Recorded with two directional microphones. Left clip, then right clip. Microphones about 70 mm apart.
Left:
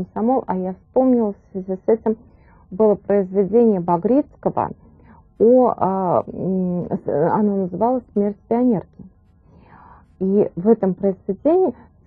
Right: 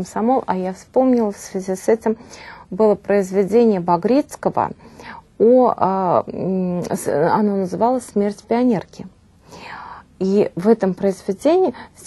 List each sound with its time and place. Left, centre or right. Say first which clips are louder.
0.1 s a woman's voice: right 2 dB; centre
1.5 s a woman's voice: right 4 dB; right
2.8 s a woman's voice: right 1 dB; centre
9.6 s whispering: right 13 dB; centre
10.7 s a woman's voice: right 1 dB; centre